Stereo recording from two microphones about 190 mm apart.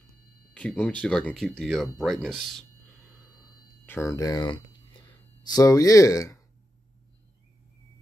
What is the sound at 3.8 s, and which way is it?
Speech, 10° left (ahead or behind).